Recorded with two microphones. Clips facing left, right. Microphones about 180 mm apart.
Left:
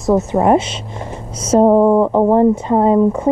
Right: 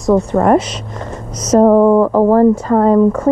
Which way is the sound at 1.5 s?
25° left (ahead or behind).